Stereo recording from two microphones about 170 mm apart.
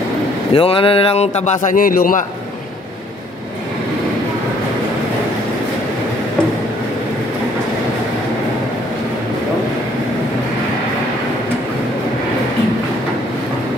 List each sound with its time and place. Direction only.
0.5 s a man's voice: 35° left (ahead or behind); by 2.2 s 55° left (ahead or behind)